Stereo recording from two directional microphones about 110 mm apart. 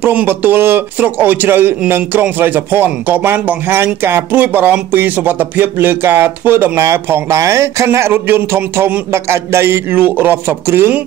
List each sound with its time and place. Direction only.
0.0 s a man's voice: 15° right (ahead or behind)